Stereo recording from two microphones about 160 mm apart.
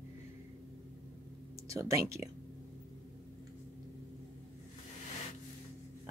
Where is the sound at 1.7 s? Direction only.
20° right (ahead or behind).